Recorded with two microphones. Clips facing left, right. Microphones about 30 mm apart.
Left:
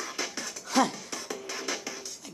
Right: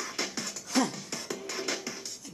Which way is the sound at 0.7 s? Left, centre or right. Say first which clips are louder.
Left 3 dB; left.